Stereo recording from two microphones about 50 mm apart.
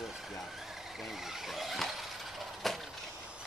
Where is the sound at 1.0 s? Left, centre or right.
Centre.